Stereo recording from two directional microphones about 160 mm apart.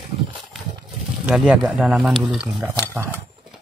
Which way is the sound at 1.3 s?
5° right (ahead or behind).